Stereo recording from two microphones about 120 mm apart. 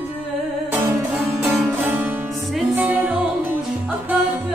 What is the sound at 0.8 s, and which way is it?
Music, 15° right (ahead or behind).